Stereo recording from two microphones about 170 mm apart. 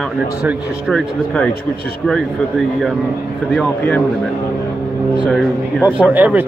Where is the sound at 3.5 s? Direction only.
5° left (ahead or behind).